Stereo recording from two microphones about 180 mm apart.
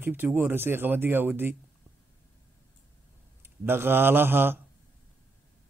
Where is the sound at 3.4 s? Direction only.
10° right (ahead or behind).